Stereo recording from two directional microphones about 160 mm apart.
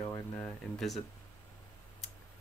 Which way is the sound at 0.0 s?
20° left (ahead or behind).